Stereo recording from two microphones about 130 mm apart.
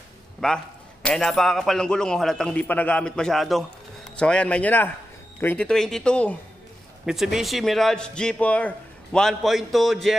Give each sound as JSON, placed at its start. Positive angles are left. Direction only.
{"t": 0.4, "sound": "a man's voice", "side_deg": 5}
{"t": 5.7, "sound": "a man's voice", "side_deg": 5}
{"t": 7.1, "sound": "a man's voice", "side_deg": -5}